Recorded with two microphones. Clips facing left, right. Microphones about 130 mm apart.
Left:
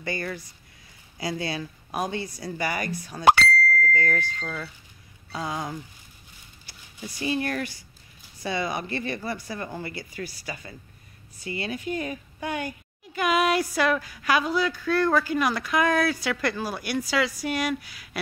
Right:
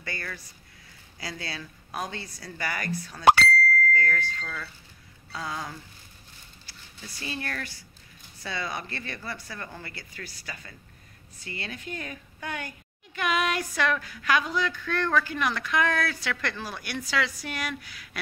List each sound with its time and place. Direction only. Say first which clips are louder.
0.0 s rain on surface: left 7 dB; 20° left (ahead or behind)
1.2 s speech: left 8 dB; 20° left (ahead or behind)
3.9 s a sound: left 1 dB; 20° left (ahead or behind)
5.3 s rain on surface: left 4 dB; 20° left (ahead or behind)
6.6 s speech: left 7 dB; 15° left (ahead or behind)